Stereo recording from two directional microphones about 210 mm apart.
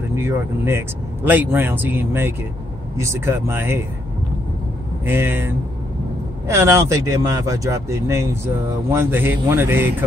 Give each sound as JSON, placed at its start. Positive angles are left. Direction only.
{"t": 0.1, "sound": "speech", "side_deg": -10}
{"t": 5.0, "sound": "speech", "side_deg": -10}